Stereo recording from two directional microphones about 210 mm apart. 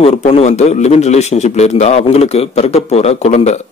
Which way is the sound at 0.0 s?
30° left (ahead or behind).